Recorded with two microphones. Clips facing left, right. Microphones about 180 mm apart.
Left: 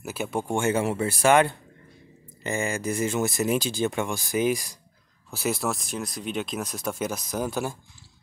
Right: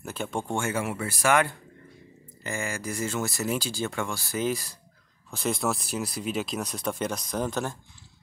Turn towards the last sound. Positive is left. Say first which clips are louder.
# left 1 dB
turn(degrees=5)  # may be behind; listen again after turning